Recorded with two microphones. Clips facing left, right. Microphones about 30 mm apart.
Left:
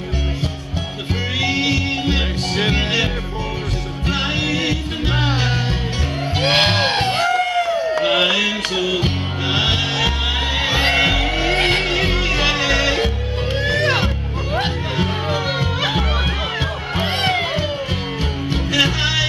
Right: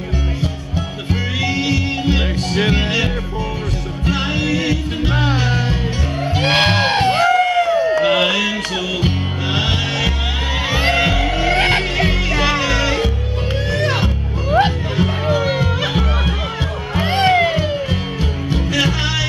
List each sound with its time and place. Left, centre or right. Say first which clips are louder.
1.4 s music: left 1 dB; centre
4.1 s music: right 1 dB; centre
6.3 s crowd: right 1 dB; centre
8.0 s music: right 1 dB; centre